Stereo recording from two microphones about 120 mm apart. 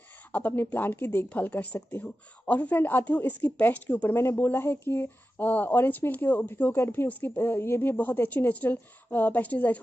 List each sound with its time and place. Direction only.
0.3 s speech: 15° left (ahead or behind)